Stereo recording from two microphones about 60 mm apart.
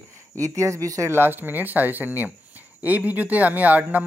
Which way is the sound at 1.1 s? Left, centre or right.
Right.